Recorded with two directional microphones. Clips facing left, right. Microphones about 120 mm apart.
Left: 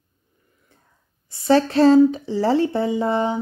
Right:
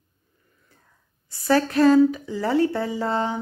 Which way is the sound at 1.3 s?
25° left (ahead or behind).